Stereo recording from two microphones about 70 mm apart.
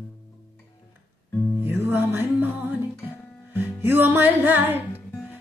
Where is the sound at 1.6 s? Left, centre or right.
Right.